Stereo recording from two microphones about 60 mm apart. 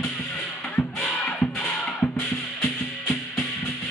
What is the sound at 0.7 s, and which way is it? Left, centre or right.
Music, left.